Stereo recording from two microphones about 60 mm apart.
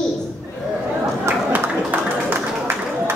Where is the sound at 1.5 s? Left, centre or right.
Right.